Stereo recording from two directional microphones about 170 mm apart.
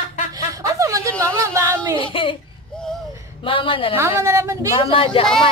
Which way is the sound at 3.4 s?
30° left (ahead or behind).